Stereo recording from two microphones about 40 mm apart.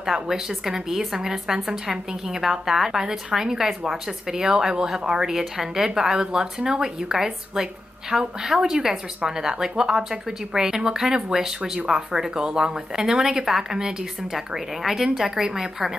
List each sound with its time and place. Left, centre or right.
0.0 s a woman's voice: centre